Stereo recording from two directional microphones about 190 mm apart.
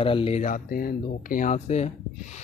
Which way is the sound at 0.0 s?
30° left (ahead or behind).